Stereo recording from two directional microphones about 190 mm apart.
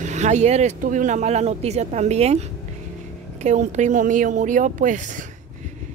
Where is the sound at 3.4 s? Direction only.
40° right (ahead or behind).